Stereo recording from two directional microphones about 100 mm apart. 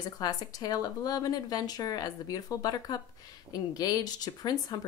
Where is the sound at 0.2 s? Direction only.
40° left (ahead or behind).